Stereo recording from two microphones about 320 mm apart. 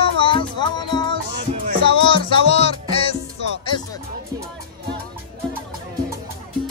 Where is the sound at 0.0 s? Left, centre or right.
Centre.